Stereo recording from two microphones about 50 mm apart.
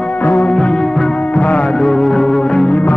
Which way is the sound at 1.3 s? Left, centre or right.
Left.